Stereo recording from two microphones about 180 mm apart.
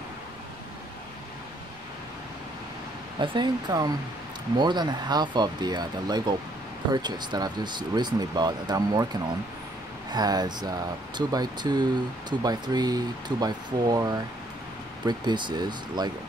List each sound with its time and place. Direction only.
3.2 s speech: 25° right (ahead or behind)